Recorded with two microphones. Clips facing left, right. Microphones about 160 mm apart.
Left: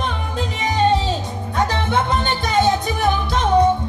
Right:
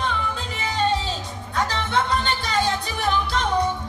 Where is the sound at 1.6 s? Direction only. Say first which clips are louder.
Left 3 dB; 50° left (ahead or behind).